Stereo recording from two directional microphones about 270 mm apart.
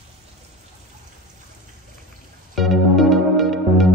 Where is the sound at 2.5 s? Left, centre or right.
Centre.